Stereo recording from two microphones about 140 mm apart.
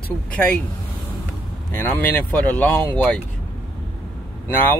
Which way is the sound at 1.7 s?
15° left (ahead or behind).